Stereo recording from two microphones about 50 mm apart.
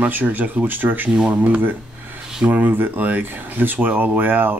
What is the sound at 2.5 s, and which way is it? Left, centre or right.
Speech, right.